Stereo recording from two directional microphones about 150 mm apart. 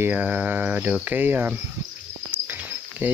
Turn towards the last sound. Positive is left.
turn(degrees=-10)  # may be behind; listen again after turning